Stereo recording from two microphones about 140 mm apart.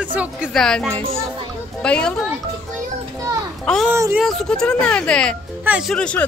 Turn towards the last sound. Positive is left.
turn(degrees=10)  # may be behind; listen again after turning